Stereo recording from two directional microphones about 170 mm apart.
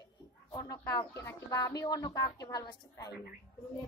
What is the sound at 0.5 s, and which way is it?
Speech, 15° left (ahead or behind).